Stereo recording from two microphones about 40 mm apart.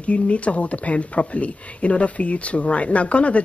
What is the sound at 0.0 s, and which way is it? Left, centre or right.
Speech, left.